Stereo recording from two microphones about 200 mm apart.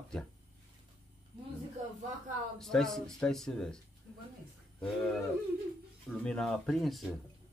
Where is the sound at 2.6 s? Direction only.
Centre (ahead or behind).